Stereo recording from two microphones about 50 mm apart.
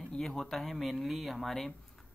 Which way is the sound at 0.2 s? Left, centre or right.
Centre.